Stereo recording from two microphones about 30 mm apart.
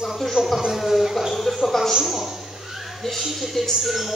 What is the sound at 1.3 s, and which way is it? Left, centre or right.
Speech, centre.